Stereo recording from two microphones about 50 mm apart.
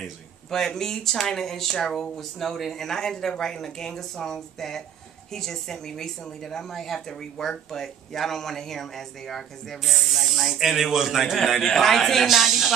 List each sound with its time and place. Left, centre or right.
0.5 s a woman's voice: centre
12.3 s speech: centre